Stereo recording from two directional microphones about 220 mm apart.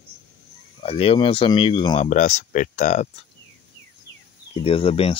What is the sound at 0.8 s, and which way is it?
Speech, 25° left (ahead or behind).